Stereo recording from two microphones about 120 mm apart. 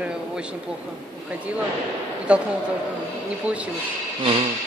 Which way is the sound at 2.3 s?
10° right (ahead or behind).